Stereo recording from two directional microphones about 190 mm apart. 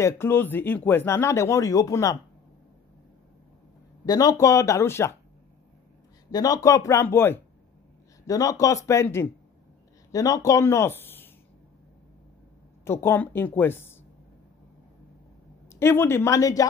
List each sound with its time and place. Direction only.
0.0 s speech: 10° left (ahead or behind)
4.0 s speech: 20° left (ahead or behind)
6.3 s speech: 20° left (ahead or behind)
12.8 s speech: 10° left (ahead or behind)
15.7 s speech: 10° left (ahead or behind)